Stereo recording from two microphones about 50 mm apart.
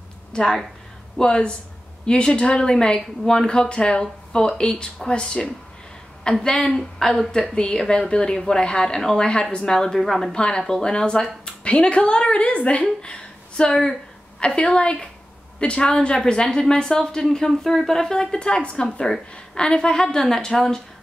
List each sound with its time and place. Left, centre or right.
0.3 s a woman's voice: centre
7.5 s speech: centre
9.9 s a woman's voice: centre
10.3 s a woman's voice: centre